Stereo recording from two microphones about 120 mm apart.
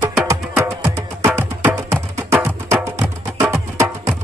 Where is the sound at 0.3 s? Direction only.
20° right (ahead or behind).